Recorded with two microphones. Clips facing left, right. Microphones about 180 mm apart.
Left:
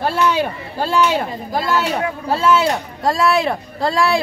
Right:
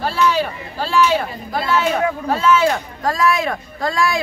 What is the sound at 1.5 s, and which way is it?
Speech, 40° left (ahead or behind).